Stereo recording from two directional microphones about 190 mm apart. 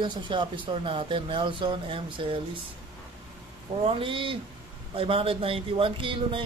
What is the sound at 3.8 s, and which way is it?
A man's voice, 25° right (ahead or behind).